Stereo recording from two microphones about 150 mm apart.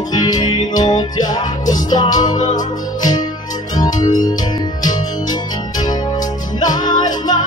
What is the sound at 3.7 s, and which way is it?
Music, 25° left (ahead or behind).